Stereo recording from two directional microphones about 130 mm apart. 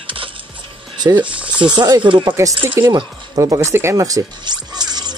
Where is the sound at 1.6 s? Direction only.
35° right (ahead or behind).